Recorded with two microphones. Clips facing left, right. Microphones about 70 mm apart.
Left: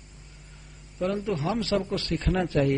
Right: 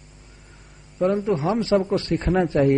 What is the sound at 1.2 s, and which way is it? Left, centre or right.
A man's voice, right.